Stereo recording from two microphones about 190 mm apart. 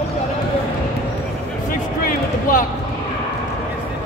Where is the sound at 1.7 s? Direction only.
45° left (ahead or behind).